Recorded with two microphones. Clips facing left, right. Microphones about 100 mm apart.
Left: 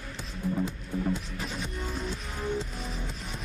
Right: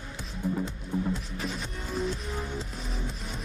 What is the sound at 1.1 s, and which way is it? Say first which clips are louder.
Music: even; centre (ahead or behind).